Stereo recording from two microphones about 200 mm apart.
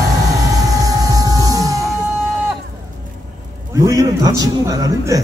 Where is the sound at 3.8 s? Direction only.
15° right (ahead or behind).